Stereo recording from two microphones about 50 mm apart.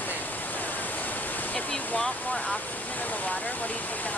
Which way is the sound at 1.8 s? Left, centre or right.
Left.